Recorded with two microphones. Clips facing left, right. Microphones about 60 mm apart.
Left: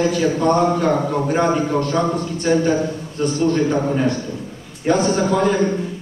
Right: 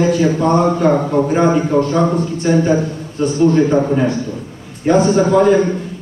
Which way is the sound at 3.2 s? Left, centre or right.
Centre.